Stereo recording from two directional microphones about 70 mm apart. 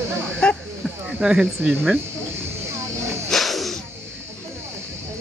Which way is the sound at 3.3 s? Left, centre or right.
Centre.